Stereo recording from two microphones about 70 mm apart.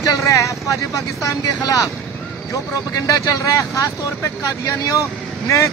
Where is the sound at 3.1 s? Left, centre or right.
Left.